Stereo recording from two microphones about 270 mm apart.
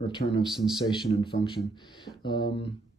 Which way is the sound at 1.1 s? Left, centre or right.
Centre.